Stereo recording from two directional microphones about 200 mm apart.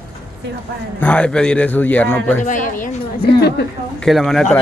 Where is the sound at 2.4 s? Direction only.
40° left (ahead or behind).